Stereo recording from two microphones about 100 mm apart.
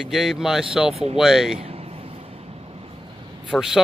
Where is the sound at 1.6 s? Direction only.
85° right.